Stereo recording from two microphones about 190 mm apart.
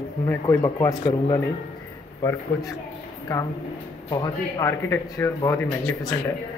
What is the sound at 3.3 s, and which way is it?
Speech, 15° left (ahead or behind).